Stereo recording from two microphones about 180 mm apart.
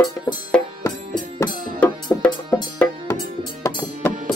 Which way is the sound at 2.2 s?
10° left (ahead or behind).